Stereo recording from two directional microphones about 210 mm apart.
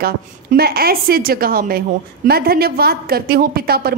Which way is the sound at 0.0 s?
45° right (ahead or behind).